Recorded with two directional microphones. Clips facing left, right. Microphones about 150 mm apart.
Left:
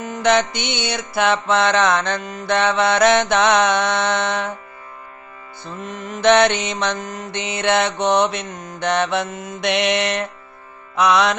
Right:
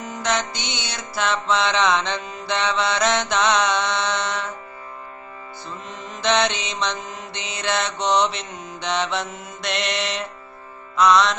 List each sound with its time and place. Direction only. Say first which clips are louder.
0.0 s mantra: left 7 dB; 60° left (ahead or behind)
5.9 s mantra: left 8 dB; 55° left (ahead or behind)